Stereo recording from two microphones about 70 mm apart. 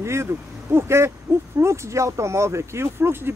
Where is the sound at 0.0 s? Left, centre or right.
Right.